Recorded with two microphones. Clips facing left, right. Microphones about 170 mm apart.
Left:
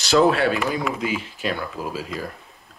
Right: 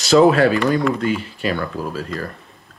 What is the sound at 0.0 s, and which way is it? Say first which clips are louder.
Speech: right 5 dB; centre (ahead or behind).